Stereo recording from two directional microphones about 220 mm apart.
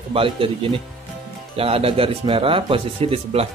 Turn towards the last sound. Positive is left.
turn(degrees=-25)  # may be behind; listen again after turning